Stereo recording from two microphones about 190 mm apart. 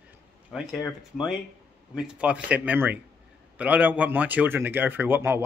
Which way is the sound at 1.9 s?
5° right (ahead or behind).